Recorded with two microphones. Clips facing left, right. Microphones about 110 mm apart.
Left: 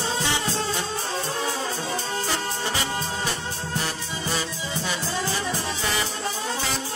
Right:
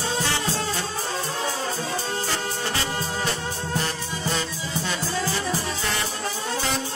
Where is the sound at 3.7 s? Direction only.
5° left (ahead or behind).